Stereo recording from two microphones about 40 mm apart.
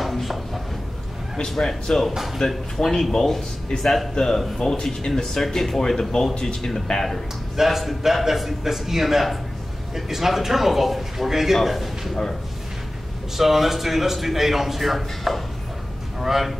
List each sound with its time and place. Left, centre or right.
0.0 s a sound: centre
1.5 s a man's voice: centre
7.5 s a man's voice: centre
13.4 s a man's voice: centre